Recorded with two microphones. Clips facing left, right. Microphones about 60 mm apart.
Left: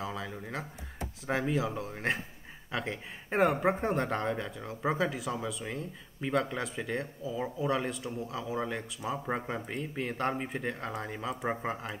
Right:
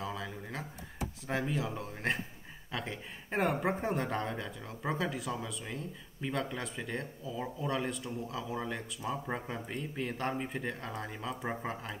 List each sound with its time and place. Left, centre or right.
0.0 s a sound: centre
1.2 s speech: centre
11.4 s speech: centre
11.7 s speech: centre